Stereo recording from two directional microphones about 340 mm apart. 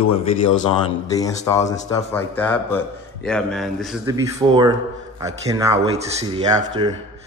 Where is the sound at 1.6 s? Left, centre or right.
Centre.